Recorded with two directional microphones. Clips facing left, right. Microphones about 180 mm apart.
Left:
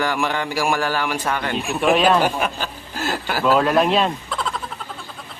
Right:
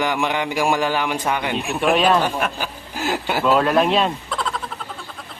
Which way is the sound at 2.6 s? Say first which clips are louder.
Even; 15° right (ahead or behind).